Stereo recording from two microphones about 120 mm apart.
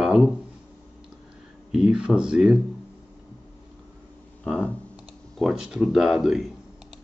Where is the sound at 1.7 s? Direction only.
5° right (ahead or behind).